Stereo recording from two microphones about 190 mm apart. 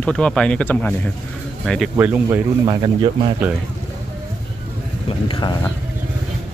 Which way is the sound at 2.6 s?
20° right (ahead or behind).